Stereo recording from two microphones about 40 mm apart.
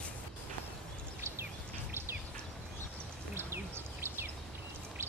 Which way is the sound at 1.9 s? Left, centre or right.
Right.